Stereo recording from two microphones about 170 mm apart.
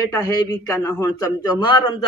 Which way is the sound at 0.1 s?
20° left (ahead or behind).